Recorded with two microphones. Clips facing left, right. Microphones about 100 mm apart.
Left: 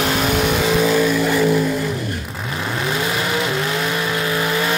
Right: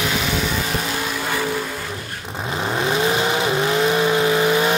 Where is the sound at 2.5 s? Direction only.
30° right (ahead or behind).